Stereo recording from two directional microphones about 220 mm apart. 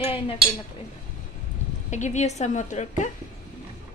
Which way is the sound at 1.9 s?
35° left (ahead or behind).